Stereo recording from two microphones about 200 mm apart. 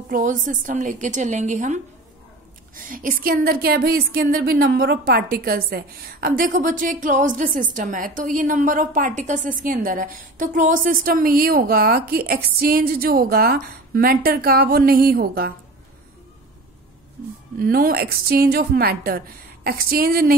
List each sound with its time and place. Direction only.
0.1 s a woman's voice: 40° right (ahead or behind)
17.6 s a woman's voice: 45° right (ahead or behind)